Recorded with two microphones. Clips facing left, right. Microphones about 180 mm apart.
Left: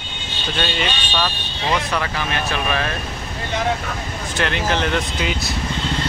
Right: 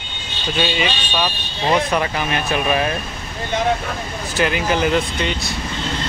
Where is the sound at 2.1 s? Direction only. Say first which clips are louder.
Right 3 dB; 15° right (ahead or behind).